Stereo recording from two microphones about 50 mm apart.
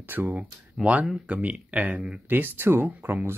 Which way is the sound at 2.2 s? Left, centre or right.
Right.